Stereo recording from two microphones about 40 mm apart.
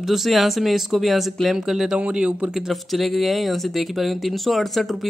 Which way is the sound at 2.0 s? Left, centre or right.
Right.